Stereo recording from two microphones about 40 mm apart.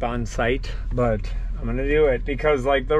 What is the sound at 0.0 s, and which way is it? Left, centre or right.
Speech, centre.